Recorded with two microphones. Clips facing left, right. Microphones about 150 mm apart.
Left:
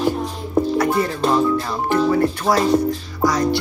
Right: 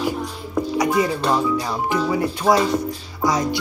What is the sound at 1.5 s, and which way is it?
Speech, 10° right (ahead or behind).